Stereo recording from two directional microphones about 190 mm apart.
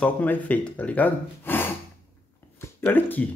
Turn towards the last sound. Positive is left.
turn(degrees=10)  # may be behind; listen again after turning